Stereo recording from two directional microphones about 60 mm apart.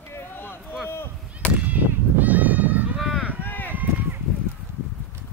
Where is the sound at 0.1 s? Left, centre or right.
Left.